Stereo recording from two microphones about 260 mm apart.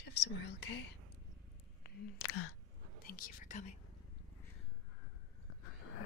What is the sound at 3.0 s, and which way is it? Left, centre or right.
Speech, left.